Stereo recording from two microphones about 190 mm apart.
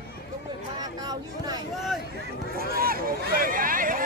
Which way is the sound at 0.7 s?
20° right (ahead or behind).